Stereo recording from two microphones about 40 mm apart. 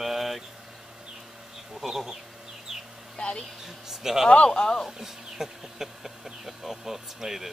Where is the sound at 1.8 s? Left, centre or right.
Centre.